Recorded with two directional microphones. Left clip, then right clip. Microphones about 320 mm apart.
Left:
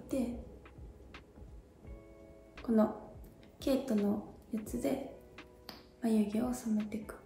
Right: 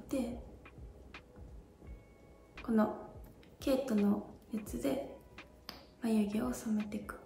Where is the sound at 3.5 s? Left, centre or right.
Centre.